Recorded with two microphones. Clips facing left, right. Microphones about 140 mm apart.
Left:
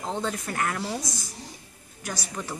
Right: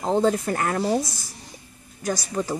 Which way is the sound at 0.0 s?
35° right (ahead or behind).